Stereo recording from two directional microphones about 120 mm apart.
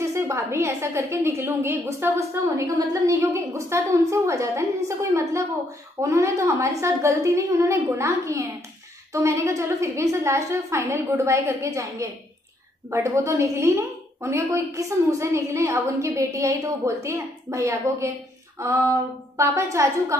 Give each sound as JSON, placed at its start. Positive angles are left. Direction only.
{"t": 0.1, "sound": "a woman's voice", "side_deg": -25}